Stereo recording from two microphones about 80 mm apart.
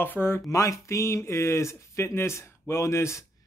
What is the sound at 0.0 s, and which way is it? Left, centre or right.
Speech, left.